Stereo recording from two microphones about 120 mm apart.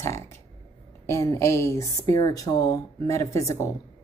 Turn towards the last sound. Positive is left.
turn(degrees=25)  # may be behind; listen again after turning